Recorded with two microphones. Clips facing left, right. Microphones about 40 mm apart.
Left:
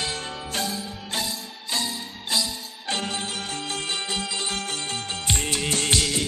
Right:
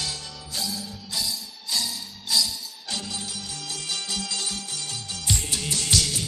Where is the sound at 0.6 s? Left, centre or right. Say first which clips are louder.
Left 2 dB; left.